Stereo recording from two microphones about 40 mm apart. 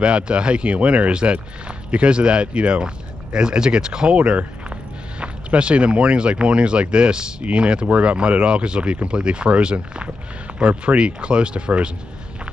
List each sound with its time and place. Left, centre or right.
0.0 s speech: right